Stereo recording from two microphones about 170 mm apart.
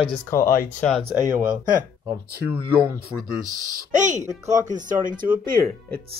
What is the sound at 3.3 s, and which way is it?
Speech, 50° right (ahead or behind).